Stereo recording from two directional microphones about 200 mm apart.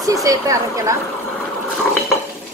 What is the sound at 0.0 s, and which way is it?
Speech, 15° right (ahead or behind).